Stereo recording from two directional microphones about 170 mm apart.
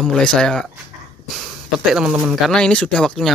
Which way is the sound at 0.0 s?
5° left (ahead or behind).